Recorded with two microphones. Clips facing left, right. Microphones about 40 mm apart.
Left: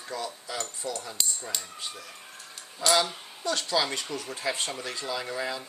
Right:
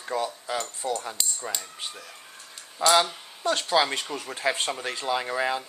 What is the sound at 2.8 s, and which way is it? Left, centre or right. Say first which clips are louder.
Speech: right 4 dB; right.